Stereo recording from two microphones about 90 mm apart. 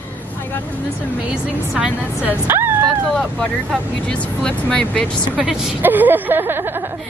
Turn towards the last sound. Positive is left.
turn(degrees=-25)  # may be behind; listen again after turning